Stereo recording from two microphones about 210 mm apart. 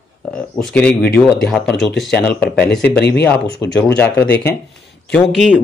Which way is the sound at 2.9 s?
55° left (ahead or behind).